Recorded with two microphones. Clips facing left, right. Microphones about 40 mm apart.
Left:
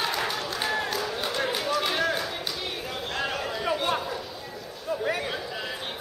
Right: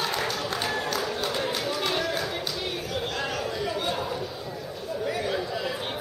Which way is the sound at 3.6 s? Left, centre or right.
Left.